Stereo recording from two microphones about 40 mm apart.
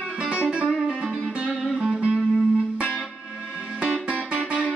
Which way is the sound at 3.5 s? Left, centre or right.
Centre.